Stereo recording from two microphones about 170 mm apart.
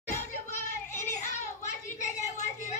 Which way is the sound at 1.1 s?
45° left (ahead or behind).